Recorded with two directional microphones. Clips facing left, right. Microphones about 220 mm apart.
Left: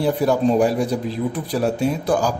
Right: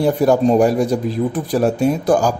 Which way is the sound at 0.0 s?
45° right (ahead or behind).